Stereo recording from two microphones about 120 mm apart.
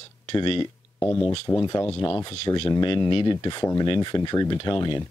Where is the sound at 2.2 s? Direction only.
45° left (ahead or behind).